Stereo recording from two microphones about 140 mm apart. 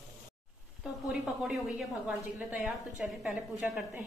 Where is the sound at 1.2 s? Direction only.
Centre (ahead or behind).